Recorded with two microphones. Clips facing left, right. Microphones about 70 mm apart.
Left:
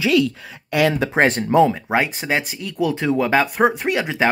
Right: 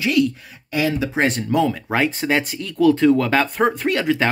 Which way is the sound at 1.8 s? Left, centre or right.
Centre.